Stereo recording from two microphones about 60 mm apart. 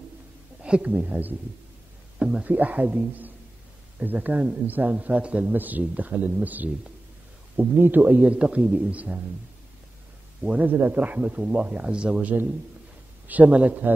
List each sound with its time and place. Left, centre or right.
0.7 s a man's voice: right
2.1 s speech: centre
2.5 s a man's voice: right
5.5 s a man's voice: right
10.4 s a man's voice: right